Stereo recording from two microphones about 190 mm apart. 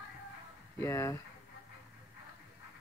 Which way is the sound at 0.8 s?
15° left (ahead or behind).